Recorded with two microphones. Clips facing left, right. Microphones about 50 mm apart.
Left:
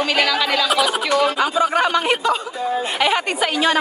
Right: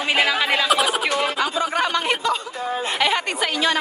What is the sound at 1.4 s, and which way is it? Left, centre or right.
A woman's voice, centre.